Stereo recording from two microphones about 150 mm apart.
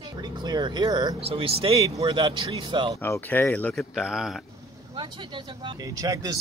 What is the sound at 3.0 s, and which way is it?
Speech, 15° left (ahead or behind).